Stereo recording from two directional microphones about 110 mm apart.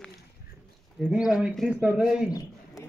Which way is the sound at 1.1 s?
10° right (ahead or behind).